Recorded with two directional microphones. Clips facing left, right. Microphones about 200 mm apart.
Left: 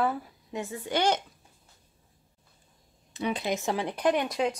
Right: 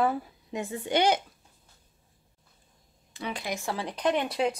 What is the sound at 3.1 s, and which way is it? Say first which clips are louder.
Speech: left 5 dB; 20° left (ahead or behind).